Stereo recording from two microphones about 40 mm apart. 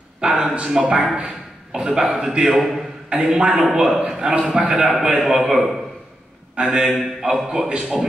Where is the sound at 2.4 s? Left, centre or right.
Centre.